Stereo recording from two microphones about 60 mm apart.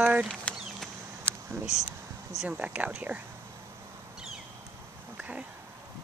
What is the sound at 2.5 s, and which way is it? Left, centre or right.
Speech, right.